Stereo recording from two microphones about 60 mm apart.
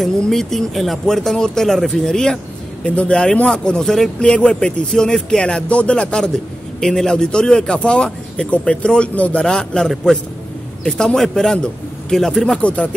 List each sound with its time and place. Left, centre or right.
0.3 s speech: centre
12.6 s speech: left